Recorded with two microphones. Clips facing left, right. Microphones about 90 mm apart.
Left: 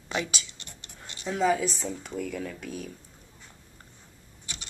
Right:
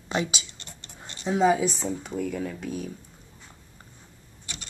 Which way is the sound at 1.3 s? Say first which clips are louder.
Right 4 dB; 15° right (ahead or behind).